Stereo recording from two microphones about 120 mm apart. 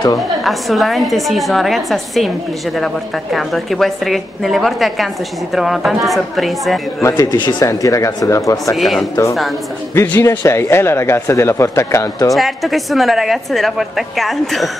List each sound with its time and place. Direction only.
0.4 s a woman's voice: centre (ahead or behind)
7.0 s speech: 25° left (ahead or behind)
8.7 s a woman's voice: centre (ahead or behind)
9.9 s speech: 20° left (ahead or behind)
12.4 s a woman's voice: centre (ahead or behind)